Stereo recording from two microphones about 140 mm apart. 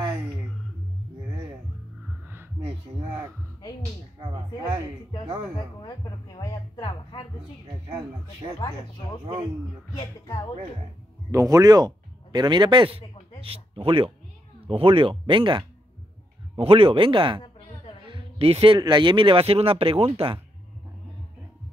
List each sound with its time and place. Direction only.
2.2 s heart sounds: 15° right (ahead or behind)
4.2 s a sound: 25° right (ahead or behind)
5.8 s a sound: 30° left (ahead or behind)
8.5 s speech: 30° left (ahead or behind)
11.3 s speech: 25° right (ahead or behind)
18.0 s music: 40° right (ahead or behind)
18.8 s speech: 35° right (ahead or behind)